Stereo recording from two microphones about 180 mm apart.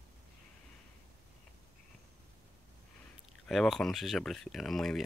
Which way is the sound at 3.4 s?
Centre (ahead or behind).